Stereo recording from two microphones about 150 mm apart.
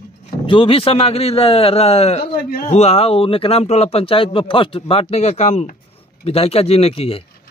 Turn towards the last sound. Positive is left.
turn(degrees=40)  # may be behind; listen again after turning